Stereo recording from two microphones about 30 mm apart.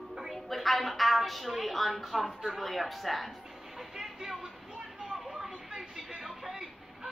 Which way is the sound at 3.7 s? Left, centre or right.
Centre.